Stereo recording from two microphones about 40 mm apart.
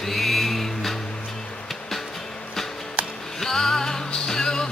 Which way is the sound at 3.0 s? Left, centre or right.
Right.